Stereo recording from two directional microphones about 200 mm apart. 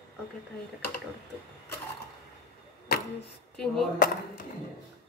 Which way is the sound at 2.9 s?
50° left (ahead or behind).